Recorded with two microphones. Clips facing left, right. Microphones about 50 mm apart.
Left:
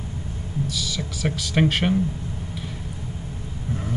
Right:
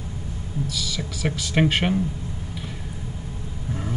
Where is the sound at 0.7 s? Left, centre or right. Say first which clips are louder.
Left 1 dB; centre.